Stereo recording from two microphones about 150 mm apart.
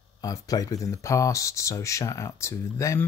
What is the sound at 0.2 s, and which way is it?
Speech, 25° left (ahead or behind).